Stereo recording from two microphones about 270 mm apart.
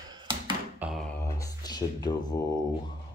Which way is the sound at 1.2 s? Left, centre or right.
Centre.